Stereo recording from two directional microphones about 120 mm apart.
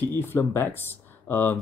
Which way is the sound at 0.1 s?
20° left (ahead or behind).